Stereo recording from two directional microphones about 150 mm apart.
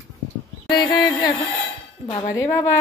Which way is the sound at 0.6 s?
30° left (ahead or behind).